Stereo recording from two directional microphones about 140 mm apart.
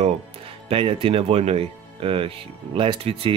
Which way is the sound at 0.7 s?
40° right (ahead or behind).